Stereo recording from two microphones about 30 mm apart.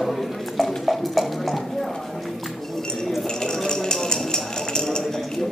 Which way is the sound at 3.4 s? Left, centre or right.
Left.